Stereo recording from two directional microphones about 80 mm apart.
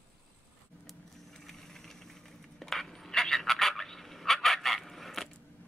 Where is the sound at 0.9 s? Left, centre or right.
Centre.